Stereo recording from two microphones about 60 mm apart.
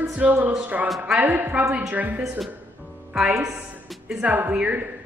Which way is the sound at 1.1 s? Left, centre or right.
Right.